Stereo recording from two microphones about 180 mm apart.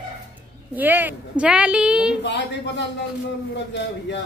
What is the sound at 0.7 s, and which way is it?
A woman's voice, 10° right (ahead or behind).